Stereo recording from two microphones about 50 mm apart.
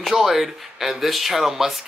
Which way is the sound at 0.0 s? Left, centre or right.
Centre.